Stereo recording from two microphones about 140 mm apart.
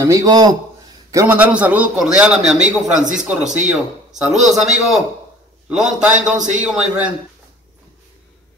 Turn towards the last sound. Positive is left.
turn(degrees=-5)  # may be behind; listen again after turning